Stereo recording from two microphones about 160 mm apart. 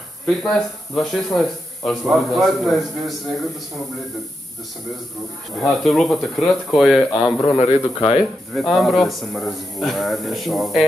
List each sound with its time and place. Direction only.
0.4 s a man's voice: centre (ahead or behind)
5.6 s a man's voice: centre (ahead or behind)
7.5 s a man's voice: 40° left (ahead or behind)
8.5 s a man's voice: centre (ahead or behind)